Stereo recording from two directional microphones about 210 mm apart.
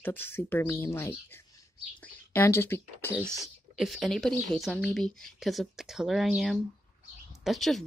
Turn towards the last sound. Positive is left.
turn(degrees=0)  # may be behind; listen again after turning